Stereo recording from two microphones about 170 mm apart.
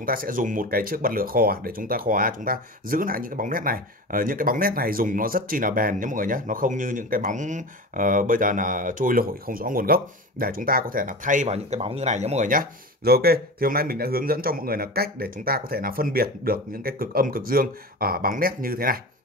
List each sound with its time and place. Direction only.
0.0 s speech: 55° right (ahead or behind)
11.4 s speech: 35° right (ahead or behind); by 18.9 s 60° right (ahead or behind)